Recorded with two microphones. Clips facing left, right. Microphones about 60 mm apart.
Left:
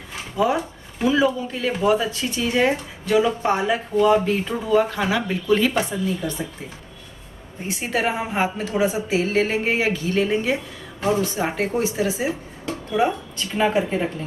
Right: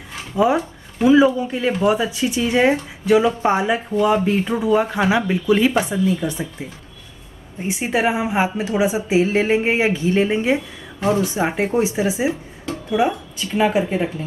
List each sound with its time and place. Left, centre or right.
0.4 s a woman's voice: right
7.6 s a woman's voice: centre
11.0 s speech: centre
11.2 s speech: centre